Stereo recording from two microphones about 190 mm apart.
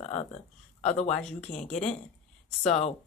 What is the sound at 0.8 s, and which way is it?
Speech, 35° left (ahead or behind).